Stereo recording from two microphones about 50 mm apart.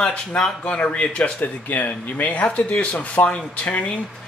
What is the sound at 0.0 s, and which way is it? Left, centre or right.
Speech, left.